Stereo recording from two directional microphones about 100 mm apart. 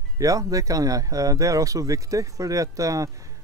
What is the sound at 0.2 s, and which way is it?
Speech, 35° right (ahead or behind).